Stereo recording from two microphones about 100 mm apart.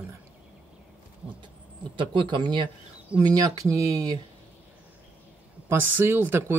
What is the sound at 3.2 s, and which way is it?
Speech, 45° right (ahead or behind).